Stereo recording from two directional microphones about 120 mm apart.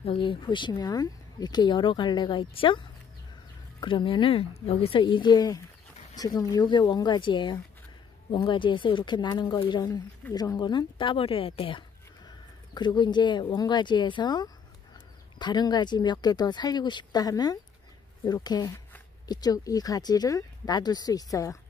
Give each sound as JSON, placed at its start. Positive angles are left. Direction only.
{"t": 0.0, "sound": "a woman's voice", "side_deg": 50}
{"t": 5.0, "sound": "a woman's voice", "side_deg": 40}